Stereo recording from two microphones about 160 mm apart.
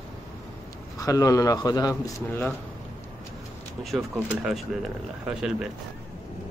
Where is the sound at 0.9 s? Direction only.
20° left (ahead or behind).